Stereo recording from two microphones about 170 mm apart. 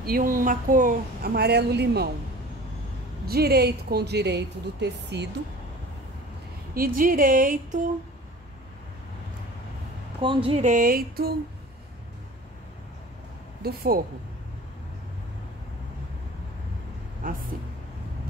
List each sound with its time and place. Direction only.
0.0 s speech: 55° right (ahead or behind); by 2.0 s 75° right (ahead or behind)
3.3 s speech: 65° right (ahead or behind); by 5.3 s 90° right
6.7 s speech: 55° right (ahead or behind)
10.2 s speech: 30° right (ahead or behind)
10.6 s speech: 50° right (ahead or behind)
13.6 s speech: 65° right (ahead or behind)